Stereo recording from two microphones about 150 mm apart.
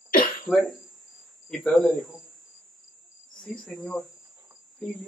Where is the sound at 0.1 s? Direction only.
70° left (ahead or behind).